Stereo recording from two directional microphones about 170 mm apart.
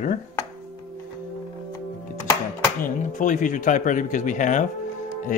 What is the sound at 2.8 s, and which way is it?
Speech, 50° left (ahead or behind).